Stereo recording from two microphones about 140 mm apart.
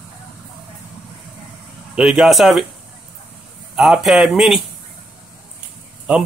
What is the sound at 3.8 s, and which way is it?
Speech, centre (ahead or behind).